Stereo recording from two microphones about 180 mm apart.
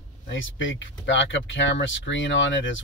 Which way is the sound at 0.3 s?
90° left.